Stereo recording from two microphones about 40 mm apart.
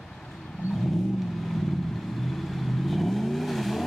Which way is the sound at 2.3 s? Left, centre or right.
Centre.